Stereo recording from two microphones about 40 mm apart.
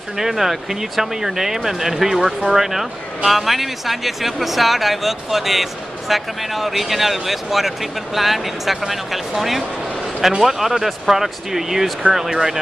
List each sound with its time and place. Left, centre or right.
0.2 s speech: centre